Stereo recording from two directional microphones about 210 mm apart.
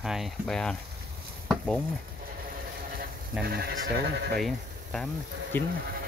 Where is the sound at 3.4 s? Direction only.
50° right (ahead or behind).